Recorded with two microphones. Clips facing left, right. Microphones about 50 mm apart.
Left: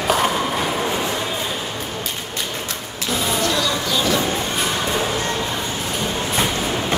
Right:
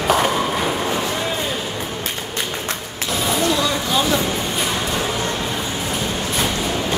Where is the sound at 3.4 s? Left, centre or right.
Right.